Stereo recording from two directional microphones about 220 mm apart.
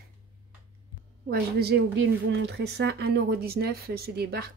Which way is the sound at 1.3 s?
45° right (ahead or behind).